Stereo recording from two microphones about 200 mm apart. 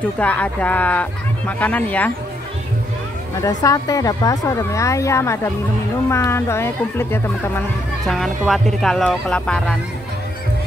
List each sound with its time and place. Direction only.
0.2 s speech: 5° left (ahead or behind)
3.3 s speech: 15° left (ahead or behind)